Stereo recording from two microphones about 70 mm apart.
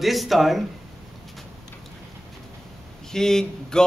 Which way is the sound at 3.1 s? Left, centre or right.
Centre.